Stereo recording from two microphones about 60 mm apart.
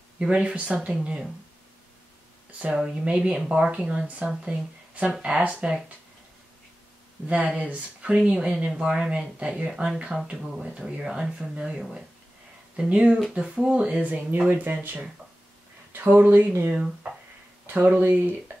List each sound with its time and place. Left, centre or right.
0.2 s speech: centre
2.7 s speech: centre
7.2 s speech: right
16.7 s speech: centre
17.6 s speech: right
18.5 s a sound: right